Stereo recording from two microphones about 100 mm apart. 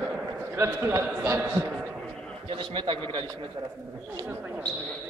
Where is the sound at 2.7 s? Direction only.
60° right (ahead or behind).